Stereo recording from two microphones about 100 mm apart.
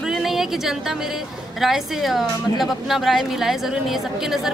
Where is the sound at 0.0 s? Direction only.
5° right (ahead or behind).